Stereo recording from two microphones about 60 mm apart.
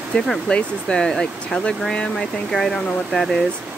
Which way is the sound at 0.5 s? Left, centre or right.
Centre.